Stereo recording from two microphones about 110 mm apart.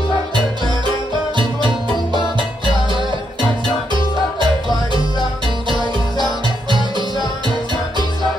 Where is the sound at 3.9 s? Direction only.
45° right (ahead or behind).